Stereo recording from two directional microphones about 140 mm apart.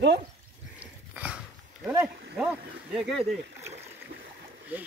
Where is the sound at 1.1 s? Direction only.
10° right (ahead or behind).